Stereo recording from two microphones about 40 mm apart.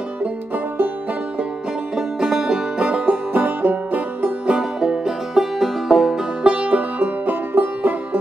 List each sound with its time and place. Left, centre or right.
2.0 s music: centre
2.8 s music: right
4.5 s music: centre
5.3 s music: centre
6.4 s music: right
7.0 s music: right